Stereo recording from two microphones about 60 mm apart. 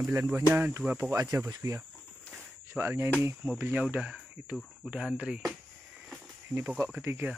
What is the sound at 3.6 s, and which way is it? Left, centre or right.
Speech, right.